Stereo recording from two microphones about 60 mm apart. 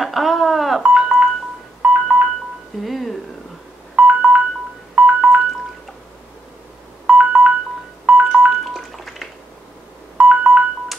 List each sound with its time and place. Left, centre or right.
0.0 s telephone dialing: centre
0.9 s telephone dialing: centre
2.8 s a sound: centre
3.9 s telephone dialing: centre
7.1 s ringtone: centre
8.1 s telephone dialing: centre
8.6 s telephone dialing: centre
10.1 s telephone dialing: centre